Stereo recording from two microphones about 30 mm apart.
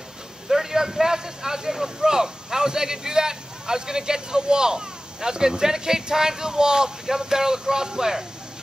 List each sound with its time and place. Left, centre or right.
0.5 s a man's voice: centre